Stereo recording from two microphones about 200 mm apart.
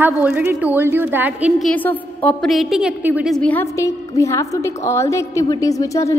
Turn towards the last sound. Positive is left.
turn(degrees=15)  # may be behind; listen again after turning